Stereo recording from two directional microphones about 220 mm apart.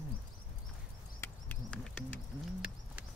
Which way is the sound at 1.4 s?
5° left (ahead or behind).